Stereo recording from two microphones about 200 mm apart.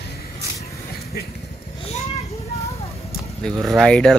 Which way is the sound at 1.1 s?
50° left (ahead or behind).